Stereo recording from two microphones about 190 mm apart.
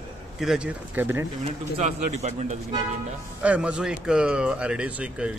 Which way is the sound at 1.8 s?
40° right (ahead or behind).